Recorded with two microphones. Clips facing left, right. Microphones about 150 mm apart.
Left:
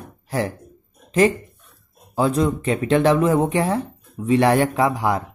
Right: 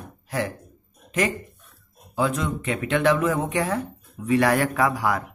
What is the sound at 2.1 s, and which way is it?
Speech, 35° left (ahead or behind).